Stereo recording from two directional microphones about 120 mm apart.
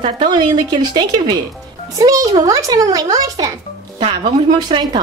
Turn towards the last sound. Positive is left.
turn(degrees=-55)  # may be behind; listen again after turning